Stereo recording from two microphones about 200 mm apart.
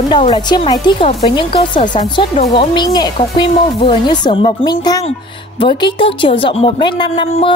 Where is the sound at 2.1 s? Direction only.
25° left (ahead or behind).